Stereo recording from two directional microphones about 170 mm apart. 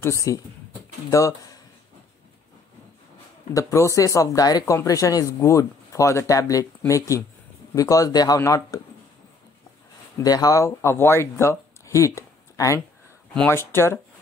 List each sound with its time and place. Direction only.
0.0 s speech: 20° left (ahead or behind)
3.5 s speech: 20° left (ahead or behind)
10.1 s speech: 20° left (ahead or behind)
13.3 s speech: 5° left (ahead or behind)